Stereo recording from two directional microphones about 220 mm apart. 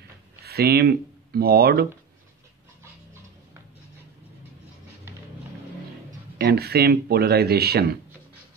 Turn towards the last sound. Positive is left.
turn(degrees=-45)  # may be behind; listen again after turning